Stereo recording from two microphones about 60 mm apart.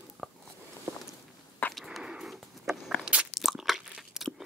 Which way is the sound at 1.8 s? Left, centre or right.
Centre.